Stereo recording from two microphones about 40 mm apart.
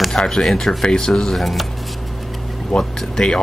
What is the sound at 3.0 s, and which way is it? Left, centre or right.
Speech, centre.